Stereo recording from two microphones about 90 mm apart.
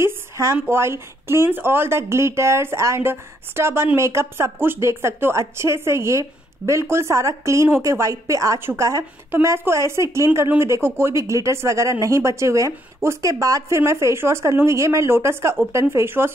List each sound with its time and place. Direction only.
0.0 s speech: 30° right (ahead or behind)